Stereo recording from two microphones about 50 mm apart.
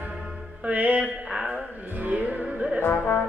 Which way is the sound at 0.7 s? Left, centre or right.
Right.